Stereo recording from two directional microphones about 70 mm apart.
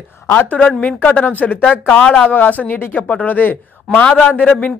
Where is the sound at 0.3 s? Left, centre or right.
Left.